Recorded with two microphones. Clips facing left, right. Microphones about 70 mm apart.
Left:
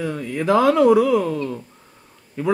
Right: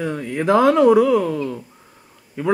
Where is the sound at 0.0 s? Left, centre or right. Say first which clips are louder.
Right 2 dB; right.